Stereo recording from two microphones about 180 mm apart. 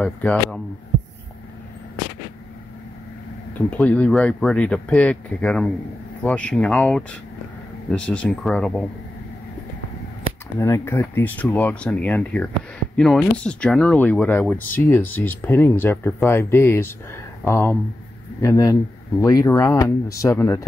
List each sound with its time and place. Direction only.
0.0 s speech: 5° left (ahead or behind)
3.5 s speech: 10° left (ahead or behind)
10.6 s speech: 15° left (ahead or behind)